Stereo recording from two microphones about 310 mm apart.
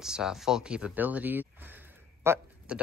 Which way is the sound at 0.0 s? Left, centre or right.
Centre.